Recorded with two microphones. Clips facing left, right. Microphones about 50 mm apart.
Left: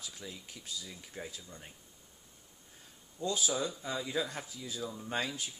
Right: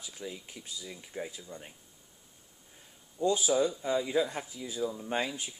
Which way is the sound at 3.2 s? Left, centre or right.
Right.